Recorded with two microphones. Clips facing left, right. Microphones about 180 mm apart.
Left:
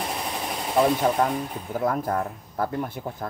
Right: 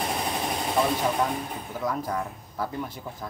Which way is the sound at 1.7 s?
50° left (ahead or behind).